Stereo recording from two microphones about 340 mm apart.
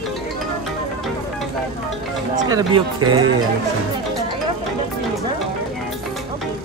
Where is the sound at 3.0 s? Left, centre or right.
Right.